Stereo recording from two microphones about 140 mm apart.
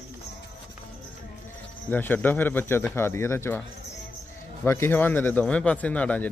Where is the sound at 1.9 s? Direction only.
15° left (ahead or behind).